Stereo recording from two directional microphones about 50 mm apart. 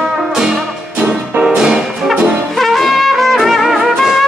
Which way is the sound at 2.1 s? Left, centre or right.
Centre.